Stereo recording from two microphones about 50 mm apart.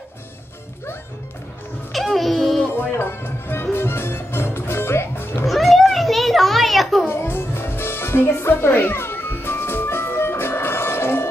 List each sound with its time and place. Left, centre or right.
1.9 s music: centre
2.7 s music: left
5.5 s a sound: centre
7.1 s music: left